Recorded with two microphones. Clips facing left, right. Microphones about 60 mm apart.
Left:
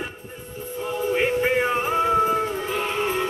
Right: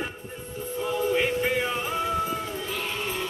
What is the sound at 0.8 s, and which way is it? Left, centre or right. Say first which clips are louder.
Music: left 2 dB; centre.